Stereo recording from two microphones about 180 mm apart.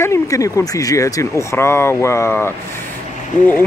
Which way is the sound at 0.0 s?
15° left (ahead or behind).